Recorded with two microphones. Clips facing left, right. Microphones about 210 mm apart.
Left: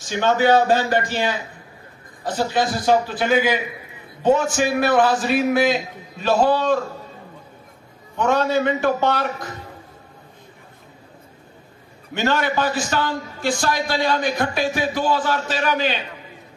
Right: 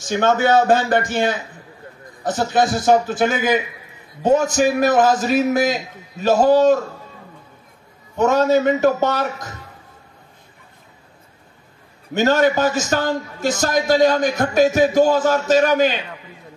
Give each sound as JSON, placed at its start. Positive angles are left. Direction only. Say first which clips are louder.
{"t": 0.1, "sound": "a man's voice", "louder": "right 1 dB", "side_deg": -50}
{"t": 8.2, "sound": "a man's voice", "louder": "right 4 dB", "side_deg": -45}
{"t": 12.1, "sound": "a man's voice", "louder": "right 6 dB", "side_deg": -45}